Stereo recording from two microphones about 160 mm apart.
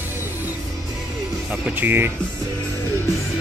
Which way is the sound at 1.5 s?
10° right (ahead or behind).